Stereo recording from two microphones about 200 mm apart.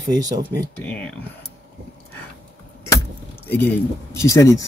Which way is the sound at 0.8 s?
5° left (ahead or behind).